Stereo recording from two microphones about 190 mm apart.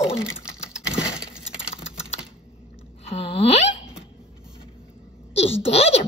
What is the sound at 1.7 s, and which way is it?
Typing, 35° left (ahead or behind).